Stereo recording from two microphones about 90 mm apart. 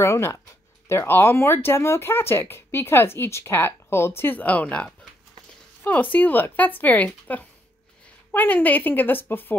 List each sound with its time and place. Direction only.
0.0 s speech: 30° left (ahead or behind)